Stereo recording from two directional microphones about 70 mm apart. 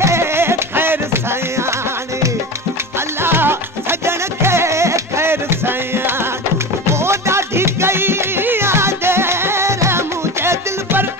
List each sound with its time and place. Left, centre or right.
0.0 s music: right
3.2 s music: right